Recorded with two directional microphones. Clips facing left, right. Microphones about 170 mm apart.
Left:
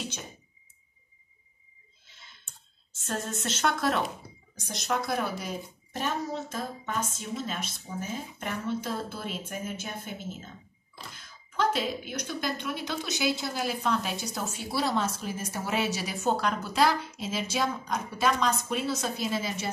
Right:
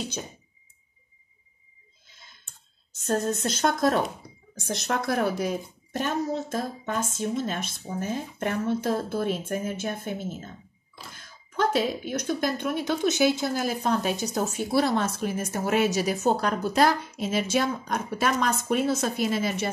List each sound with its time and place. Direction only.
2.0 s clicking: 40° right (ahead or behind)
3.0 s a woman's voice: 40° right (ahead or behind)
4.6 s speech: 60° right (ahead or behind)